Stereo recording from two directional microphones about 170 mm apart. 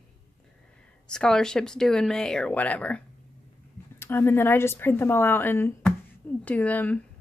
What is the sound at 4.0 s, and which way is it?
Speech, 15° left (ahead or behind).